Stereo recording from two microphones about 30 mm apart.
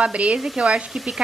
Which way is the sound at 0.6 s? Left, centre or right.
Right.